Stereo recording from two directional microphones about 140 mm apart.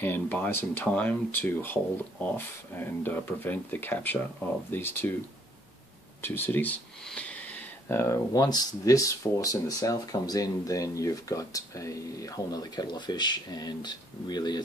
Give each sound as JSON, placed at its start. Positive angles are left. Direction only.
{"t": 0.0, "sound": "speech", "side_deg": 15}
{"t": 6.2, "sound": "speech", "side_deg": 15}